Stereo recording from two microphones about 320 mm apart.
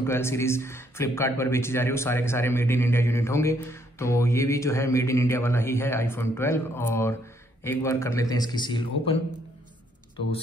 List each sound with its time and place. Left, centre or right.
0.0 s speech: centre